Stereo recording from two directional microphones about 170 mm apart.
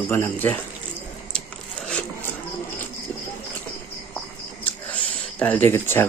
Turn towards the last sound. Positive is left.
turn(degrees=15)  # may be behind; listen again after turning